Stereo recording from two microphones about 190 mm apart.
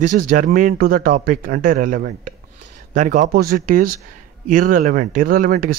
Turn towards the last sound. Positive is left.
turn(degrees=-45)  # may be behind; listen again after turning